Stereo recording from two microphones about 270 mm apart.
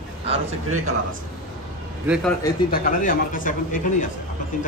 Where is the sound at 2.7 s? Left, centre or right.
Left.